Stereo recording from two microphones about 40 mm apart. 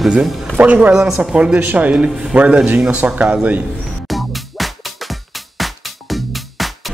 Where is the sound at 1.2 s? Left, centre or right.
Right.